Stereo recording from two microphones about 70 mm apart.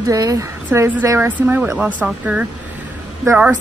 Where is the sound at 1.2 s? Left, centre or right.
Right.